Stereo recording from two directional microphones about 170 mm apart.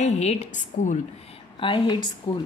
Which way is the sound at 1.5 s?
30° left (ahead or behind).